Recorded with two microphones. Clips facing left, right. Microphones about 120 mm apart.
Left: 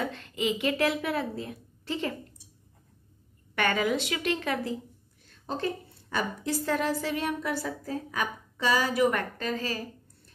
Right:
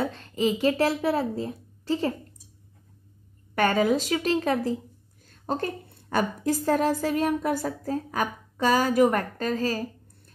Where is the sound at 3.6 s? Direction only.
40° right (ahead or behind).